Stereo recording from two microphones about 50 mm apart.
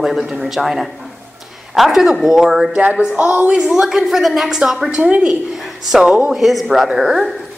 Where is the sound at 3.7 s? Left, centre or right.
Centre.